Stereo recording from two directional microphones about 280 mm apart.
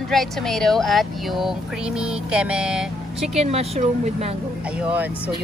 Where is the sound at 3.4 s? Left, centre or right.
Right.